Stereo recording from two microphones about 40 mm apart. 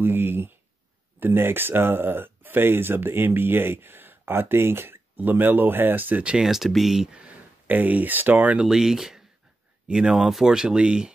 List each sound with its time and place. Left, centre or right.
0.0 s speech: right
5.1 s speech: right
6.3 s speech: centre
7.6 s speech: right
8.6 s speech: centre